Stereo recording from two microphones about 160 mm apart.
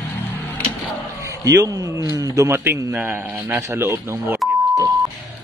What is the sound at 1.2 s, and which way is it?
A man's voice, 20° right (ahead or behind).